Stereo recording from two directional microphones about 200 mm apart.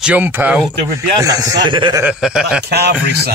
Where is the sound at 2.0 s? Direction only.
5° right (ahead or behind).